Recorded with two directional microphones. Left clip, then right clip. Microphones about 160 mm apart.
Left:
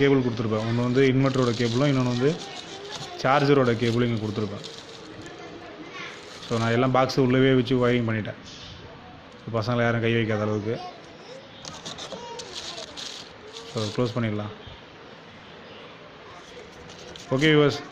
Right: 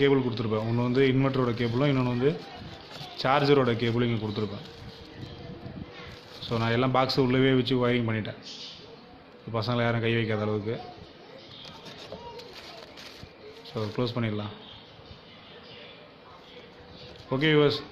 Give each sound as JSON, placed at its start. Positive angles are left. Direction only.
{"t": 0.0, "sound": "speech", "side_deg": 15}
{"t": 6.5, "sound": "speech", "side_deg": 15}
{"t": 9.5, "sound": "speech", "side_deg": 15}
{"t": 13.7, "sound": "speech", "side_deg": 15}
{"t": 17.3, "sound": "speech", "side_deg": 15}